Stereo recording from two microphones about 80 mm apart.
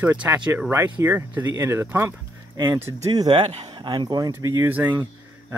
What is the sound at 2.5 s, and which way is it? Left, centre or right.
Speech, right.